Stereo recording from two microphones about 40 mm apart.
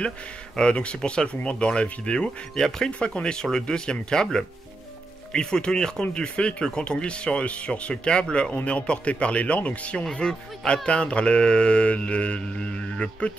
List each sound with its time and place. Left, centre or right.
0.6 s speech: left
2.5 s speech: centre; by 10.0 s left
10.1 s speech: left